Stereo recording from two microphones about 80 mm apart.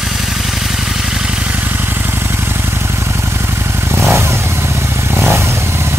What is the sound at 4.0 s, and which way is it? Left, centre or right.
Motorcycle, right.